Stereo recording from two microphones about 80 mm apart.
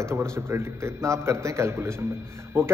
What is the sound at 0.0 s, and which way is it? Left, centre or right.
A man's voice, right.